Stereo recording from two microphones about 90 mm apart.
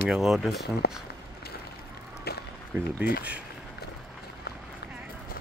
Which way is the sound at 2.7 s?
15° right (ahead or behind).